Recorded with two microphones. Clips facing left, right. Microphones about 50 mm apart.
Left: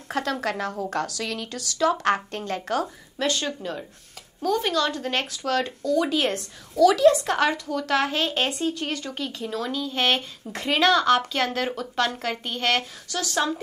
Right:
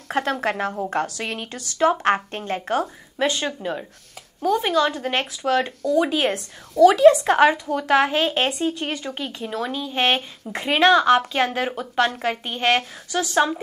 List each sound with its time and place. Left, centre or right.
0.1 s a woman's voice: right
6.7 s a woman's voice: right